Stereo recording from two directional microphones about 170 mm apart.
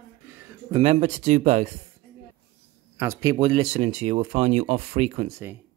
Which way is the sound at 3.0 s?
15° right (ahead or behind).